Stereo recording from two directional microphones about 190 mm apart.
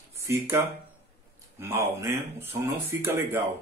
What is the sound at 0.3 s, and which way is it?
Speech, 10° right (ahead or behind).